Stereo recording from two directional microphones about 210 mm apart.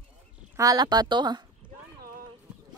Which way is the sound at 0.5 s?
15° right (ahead or behind).